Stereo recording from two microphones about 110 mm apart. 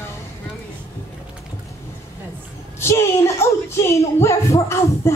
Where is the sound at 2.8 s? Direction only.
25° left (ahead or behind).